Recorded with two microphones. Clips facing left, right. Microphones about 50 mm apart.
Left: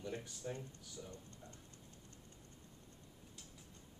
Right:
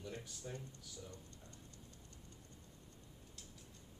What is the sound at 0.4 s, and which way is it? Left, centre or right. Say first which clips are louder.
Speech: left 5 dB; centre.